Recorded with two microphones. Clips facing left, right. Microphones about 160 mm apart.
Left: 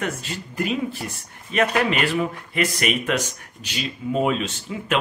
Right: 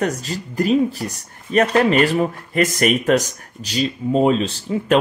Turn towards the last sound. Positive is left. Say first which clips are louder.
# right 8 dB
turn(degrees=-35)  # may be behind; listen again after turning